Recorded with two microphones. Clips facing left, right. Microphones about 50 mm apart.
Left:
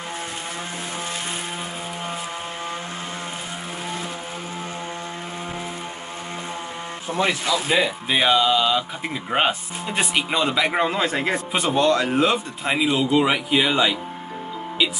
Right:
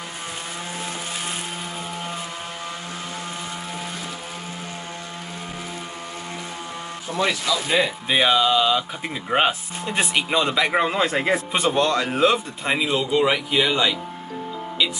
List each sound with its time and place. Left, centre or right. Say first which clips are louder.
7.1 s a man's voice: left 1 dB; left
7.7 s speech: right 1 dB; centre